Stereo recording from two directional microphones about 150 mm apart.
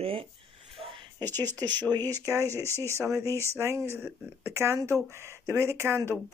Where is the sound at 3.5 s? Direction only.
20° right (ahead or behind).